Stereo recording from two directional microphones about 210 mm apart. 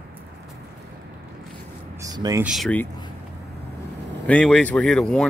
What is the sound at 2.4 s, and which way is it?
Speech, centre (ahead or behind).